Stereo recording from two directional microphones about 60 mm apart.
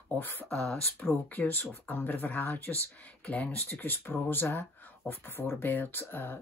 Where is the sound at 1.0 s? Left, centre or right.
Left.